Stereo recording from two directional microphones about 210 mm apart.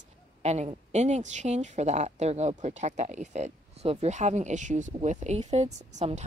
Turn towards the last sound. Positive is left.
turn(degrees=-35)  # may be behind; listen again after turning